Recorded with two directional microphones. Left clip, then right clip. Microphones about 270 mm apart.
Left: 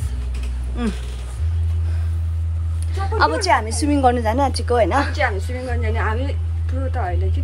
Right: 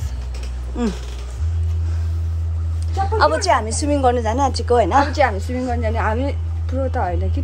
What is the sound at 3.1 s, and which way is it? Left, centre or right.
A woman's voice, centre.